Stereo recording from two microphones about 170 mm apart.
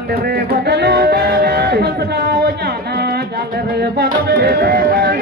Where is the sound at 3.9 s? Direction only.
70° right (ahead or behind).